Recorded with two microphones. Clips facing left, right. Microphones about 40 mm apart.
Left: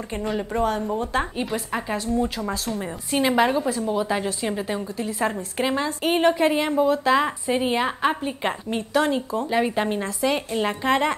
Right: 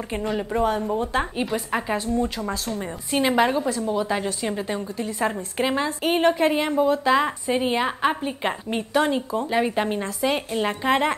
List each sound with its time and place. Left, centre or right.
0.2 s a woman's voice: centre